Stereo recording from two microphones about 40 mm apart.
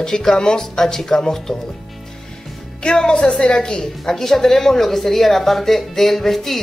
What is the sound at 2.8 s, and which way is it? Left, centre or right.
Speech, left.